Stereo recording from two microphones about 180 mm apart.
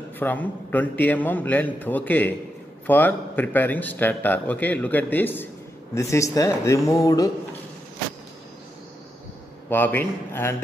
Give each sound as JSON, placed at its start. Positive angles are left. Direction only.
{"t": 0.2, "sound": "a man's voice", "side_deg": 10}
{"t": 9.7, "sound": "a man's voice", "side_deg": 10}